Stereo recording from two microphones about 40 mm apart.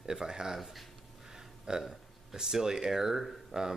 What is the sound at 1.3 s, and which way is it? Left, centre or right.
Speech, centre.